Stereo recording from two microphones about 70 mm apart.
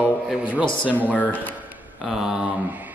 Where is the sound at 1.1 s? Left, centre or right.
Left.